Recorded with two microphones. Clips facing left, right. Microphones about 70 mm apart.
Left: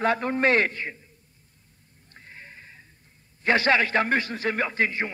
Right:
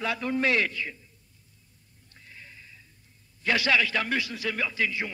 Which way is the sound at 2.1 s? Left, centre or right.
Left.